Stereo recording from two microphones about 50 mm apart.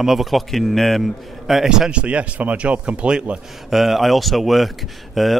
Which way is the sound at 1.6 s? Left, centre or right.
Centre.